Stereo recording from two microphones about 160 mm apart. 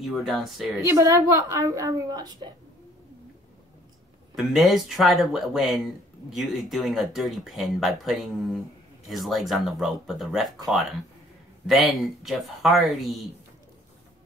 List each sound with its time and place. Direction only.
0.0 s speech: centre (ahead or behind)
0.8 s a woman's voice: 20° right (ahead or behind)
4.4 s speech: centre (ahead or behind)